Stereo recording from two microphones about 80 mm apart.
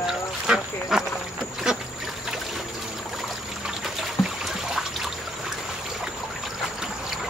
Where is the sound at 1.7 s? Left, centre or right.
Centre.